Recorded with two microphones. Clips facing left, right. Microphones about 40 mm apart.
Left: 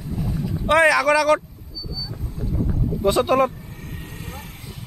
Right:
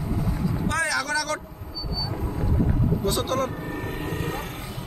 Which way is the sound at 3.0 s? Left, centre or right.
Left.